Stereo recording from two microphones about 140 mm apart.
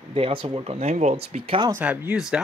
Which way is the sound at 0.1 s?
40° right (ahead or behind).